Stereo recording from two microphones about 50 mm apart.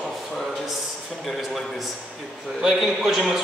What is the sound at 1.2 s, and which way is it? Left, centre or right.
A man's voice, centre.